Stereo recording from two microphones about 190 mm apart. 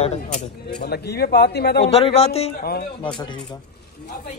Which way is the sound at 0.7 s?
60° left (ahead or behind).